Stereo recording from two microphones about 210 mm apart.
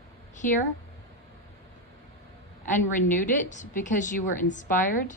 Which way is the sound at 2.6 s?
40° left (ahead or behind).